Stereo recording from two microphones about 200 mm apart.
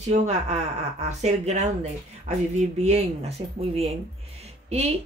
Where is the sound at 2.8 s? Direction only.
30° right (ahead or behind).